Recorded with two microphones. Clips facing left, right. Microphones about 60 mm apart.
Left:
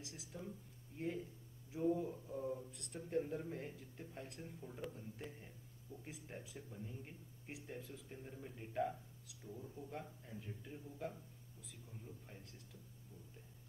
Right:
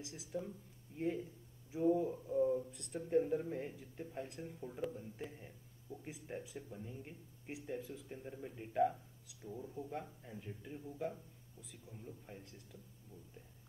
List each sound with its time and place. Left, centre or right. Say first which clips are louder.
0.0 s speech: right 7 dB; centre
12.3 s speech: right 5 dB; centre